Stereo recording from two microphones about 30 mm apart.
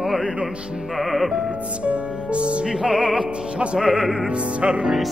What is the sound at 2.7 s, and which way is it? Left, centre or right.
Music, centre.